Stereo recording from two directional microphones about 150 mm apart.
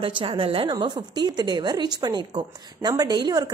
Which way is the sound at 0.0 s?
35° right (ahead or behind).